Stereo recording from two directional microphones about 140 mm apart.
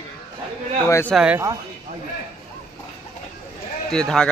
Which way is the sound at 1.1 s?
5° right (ahead or behind).